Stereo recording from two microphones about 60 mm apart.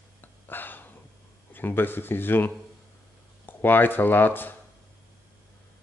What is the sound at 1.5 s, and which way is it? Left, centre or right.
Speech, left.